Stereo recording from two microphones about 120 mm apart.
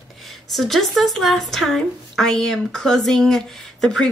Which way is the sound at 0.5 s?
Centre (ahead or behind).